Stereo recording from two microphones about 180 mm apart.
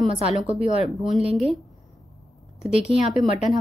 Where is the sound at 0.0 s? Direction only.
35° right (ahead or behind).